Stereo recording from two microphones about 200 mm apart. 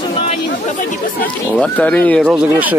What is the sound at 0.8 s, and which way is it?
Speech, 40° left (ahead or behind).